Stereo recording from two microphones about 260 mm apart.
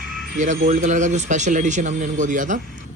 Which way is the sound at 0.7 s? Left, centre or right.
Right.